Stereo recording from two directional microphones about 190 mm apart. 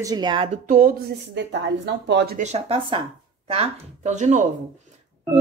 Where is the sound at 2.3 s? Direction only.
35° right (ahead or behind).